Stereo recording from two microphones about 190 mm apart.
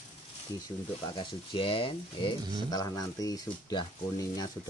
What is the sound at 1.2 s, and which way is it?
Speech, 30° left (ahead or behind).